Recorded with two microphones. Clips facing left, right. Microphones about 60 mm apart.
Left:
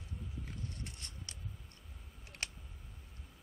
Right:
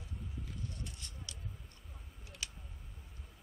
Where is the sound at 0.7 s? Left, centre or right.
Left.